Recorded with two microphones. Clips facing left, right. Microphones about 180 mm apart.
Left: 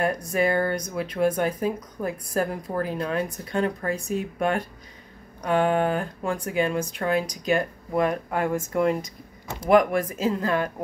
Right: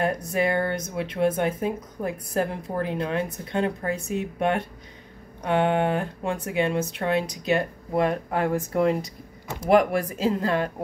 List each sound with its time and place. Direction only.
0.0 s speech: 25° right (ahead or behind)